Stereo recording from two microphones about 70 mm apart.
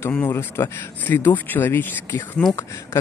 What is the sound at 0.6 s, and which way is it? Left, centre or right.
Speech, left.